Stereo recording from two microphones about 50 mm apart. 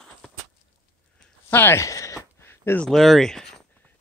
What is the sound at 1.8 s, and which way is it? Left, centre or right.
Speech, left.